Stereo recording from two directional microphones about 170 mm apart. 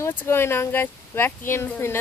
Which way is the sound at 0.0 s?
10° left (ahead or behind).